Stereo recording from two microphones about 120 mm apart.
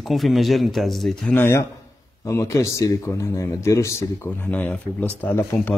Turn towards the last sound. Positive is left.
turn(degrees=15)  # may be behind; listen again after turning